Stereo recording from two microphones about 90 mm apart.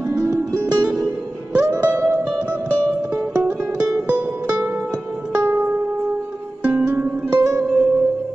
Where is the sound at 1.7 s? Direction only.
20° right (ahead or behind).